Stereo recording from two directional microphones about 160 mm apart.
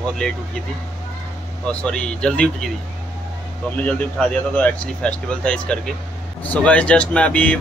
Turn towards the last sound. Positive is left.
turn(degrees=10)  # may be behind; listen again after turning